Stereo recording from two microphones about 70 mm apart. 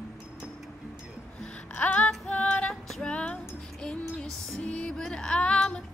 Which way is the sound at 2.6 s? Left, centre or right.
Centre.